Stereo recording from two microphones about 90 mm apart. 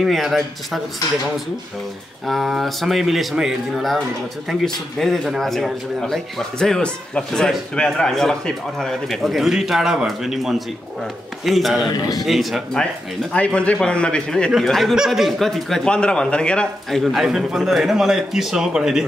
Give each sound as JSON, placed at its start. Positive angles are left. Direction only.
{"t": 0.0, "sound": "speech", "side_deg": 0}
{"t": 2.2, "sound": "speech", "side_deg": 0}
{"t": 11.9, "sound": "a man's voice", "side_deg": 40}
{"t": 12.2, "sound": "speech", "side_deg": 0}
{"t": 13.3, "sound": "a man's voice", "side_deg": 15}